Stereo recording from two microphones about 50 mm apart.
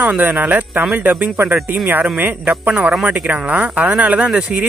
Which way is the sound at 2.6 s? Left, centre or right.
Right.